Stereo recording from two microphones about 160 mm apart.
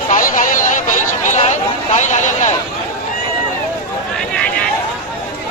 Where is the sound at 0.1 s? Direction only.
55° left (ahead or behind).